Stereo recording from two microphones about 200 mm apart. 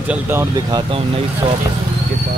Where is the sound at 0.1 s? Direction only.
10° right (ahead or behind).